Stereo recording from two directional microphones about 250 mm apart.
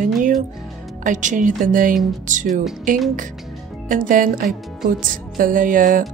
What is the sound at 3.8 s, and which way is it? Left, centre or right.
Speech, right.